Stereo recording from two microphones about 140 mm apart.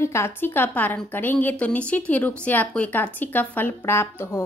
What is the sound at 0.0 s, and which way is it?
A woman's voice, 20° left (ahead or behind).